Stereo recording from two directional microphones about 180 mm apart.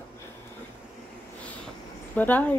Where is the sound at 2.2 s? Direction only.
10° left (ahead or behind).